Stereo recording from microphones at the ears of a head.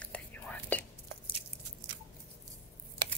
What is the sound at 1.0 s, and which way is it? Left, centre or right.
Biting, right.